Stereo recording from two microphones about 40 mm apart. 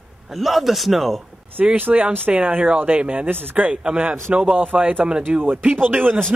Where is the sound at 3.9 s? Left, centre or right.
Right.